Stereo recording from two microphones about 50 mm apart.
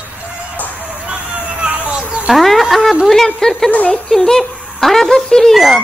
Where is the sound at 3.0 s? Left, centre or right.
Centre.